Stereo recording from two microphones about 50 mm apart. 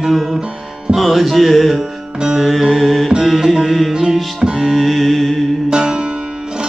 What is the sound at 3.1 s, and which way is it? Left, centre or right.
Music, centre.